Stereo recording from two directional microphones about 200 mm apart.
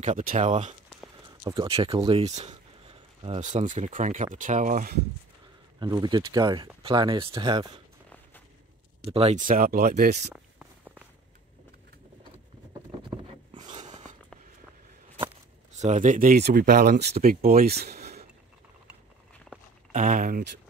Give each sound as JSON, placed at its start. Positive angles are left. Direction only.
{"t": 0.0, "sound": "speech", "side_deg": -40}
{"t": 1.2, "sound": "speech", "side_deg": -25}
{"t": 5.8, "sound": "speech", "side_deg": -20}
{"t": 9.0, "sound": "speech", "side_deg": -30}
{"t": 13.1, "sound": "a sound", "side_deg": -20}
{"t": 13.7, "sound": "a sound", "side_deg": -35}
{"t": 15.7, "sound": "speech", "side_deg": -35}
{"t": 19.9, "sound": "speech", "side_deg": -40}